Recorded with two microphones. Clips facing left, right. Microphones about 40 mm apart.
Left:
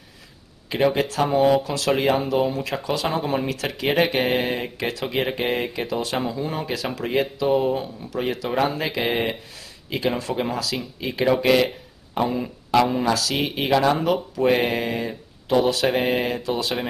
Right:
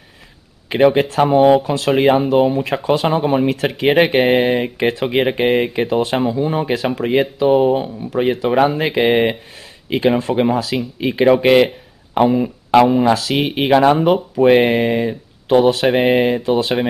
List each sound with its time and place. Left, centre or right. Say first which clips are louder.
0.7 s speech: right 7 dB; right
6.2 s a man's voice: right 9 dB; right